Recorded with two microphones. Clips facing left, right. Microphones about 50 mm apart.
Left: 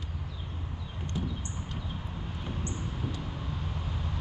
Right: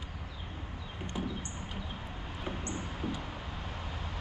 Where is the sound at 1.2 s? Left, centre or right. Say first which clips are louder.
Left 1 dB; centre.